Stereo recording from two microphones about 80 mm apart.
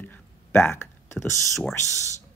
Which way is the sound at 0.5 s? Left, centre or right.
Left.